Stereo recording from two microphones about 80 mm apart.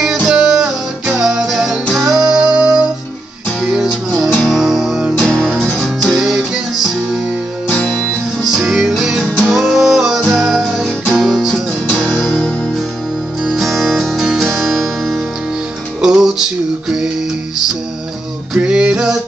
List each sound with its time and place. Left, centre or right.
0.3 s guitar: centre
1.2 s music: centre
5.1 s music: centre
5.4 s music: centre
7.8 s music: centre
8.5 s music: centre
18.5 s a sound: centre